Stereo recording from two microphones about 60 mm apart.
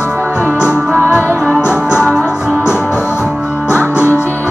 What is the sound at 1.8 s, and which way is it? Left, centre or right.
Music, centre.